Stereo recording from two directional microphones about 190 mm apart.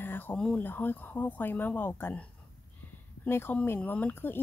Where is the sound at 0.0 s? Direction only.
10° left (ahead or behind).